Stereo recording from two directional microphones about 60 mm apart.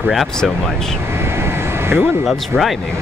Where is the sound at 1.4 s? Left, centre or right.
Right.